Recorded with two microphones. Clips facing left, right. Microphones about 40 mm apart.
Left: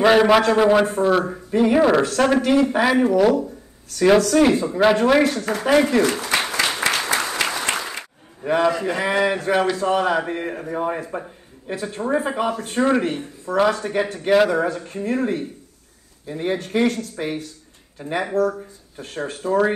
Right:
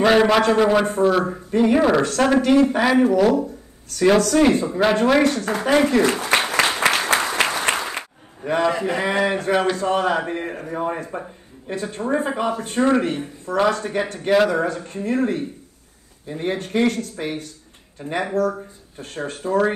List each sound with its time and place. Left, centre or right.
0.0 s a man's voice: centre
6.0 s applause: right
8.5 s a man's voice: centre